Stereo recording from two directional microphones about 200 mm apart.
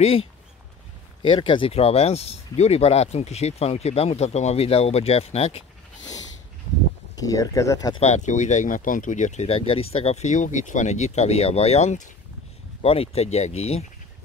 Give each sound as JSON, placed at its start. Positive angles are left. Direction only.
{"t": 0.0, "sound": "speech", "side_deg": 30}
{"t": 7.2, "sound": "speech", "side_deg": 15}
{"t": 8.0, "sound": "speech", "side_deg": 35}